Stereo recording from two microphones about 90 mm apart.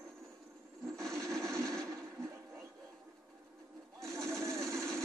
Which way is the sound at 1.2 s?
5° left (ahead or behind).